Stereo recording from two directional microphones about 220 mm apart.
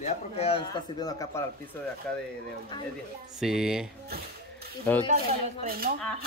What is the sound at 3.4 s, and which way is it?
Speech, centre (ahead or behind).